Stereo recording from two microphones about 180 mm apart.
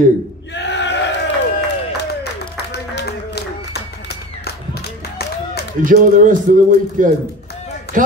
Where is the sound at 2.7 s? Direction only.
65° left (ahead or behind).